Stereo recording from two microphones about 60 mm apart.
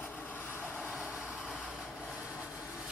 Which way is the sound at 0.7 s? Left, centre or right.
Right.